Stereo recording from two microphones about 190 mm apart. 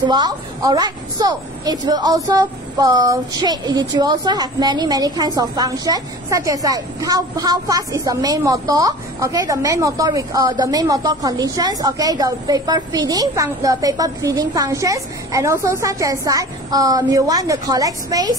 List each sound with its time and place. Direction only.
0.0 s a woman's voice: 20° right (ahead or behind)